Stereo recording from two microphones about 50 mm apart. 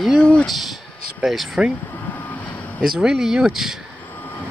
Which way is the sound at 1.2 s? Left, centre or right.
Centre.